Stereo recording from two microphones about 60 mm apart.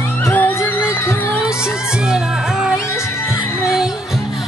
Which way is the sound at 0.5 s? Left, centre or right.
Left.